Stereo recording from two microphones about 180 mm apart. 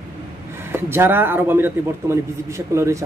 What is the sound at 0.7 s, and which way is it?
A man's voice, 10° right (ahead or behind).